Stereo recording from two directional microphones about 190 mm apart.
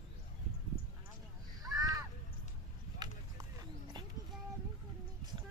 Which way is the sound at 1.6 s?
20° right (ahead or behind).